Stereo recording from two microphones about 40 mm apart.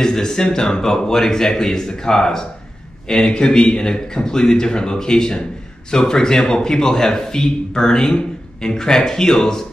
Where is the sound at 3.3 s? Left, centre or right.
Left.